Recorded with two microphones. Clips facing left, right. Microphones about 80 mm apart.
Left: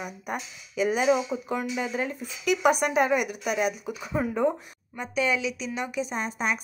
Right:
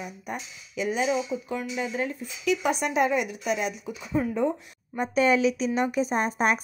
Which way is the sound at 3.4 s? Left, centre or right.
Left.